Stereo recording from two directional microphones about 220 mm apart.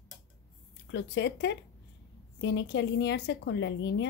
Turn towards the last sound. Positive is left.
turn(degrees=55)  # may be behind; listen again after turning